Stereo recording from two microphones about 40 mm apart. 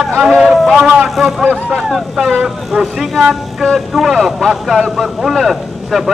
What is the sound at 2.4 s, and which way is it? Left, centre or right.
Speech, centre.